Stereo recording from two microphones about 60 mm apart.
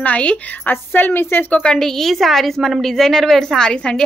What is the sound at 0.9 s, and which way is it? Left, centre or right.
Speech, left.